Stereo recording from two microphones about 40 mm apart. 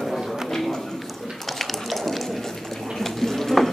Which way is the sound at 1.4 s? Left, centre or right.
Centre.